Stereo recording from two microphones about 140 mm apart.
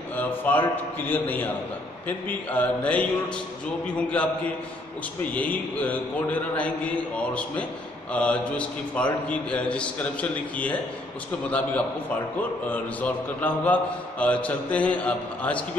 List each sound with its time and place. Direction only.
0.1 s a man's voice: 15° left (ahead or behind)
12.4 s a man's voice: 10° left (ahead or behind)